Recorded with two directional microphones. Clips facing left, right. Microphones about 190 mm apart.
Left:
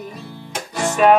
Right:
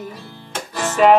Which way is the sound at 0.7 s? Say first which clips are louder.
Left 1 dB; 15° left (ahead or behind).